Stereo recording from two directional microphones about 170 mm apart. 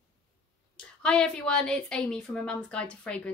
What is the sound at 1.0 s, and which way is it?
A woman's voice, 5° left (ahead or behind).